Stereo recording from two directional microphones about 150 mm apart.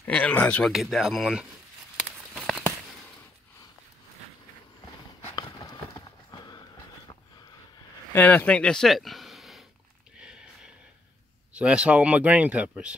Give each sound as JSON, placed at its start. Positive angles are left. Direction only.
{"t": 0.0, "sound": "speech", "side_deg": 10}
{"t": 0.7, "sound": "speech", "side_deg": 0}
{"t": 5.3, "sound": "horse", "side_deg": 30}
{"t": 8.1, "sound": "speech", "side_deg": 15}
{"t": 10.1, "sound": "a sound", "side_deg": -5}
{"t": 11.5, "sound": "speech", "side_deg": -5}